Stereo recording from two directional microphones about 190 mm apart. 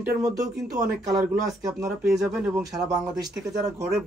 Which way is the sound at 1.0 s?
15° right (ahead or behind).